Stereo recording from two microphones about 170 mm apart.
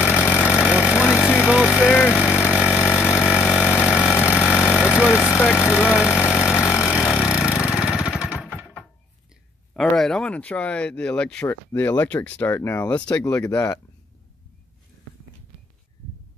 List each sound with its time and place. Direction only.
0.0 s engine: 5° right (ahead or behind)
0.5 s a sound: 5° right (ahead or behind)
2.1 s vehicle: 5° right (ahead or behind)
5.2 s a sound: 10° left (ahead or behind)
5.7 s speech: 5° right (ahead or behind)
6.5 s vehicle: 15° left (ahead or behind)
6.9 s vehicle: 5° right (ahead or behind)
9.8 s speech: centre (ahead or behind)